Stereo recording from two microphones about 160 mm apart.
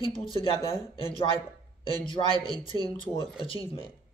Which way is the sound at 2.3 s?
25° right (ahead or behind).